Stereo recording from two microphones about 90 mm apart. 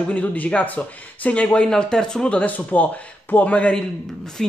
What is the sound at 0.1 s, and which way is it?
Speech, 15° left (ahead or behind).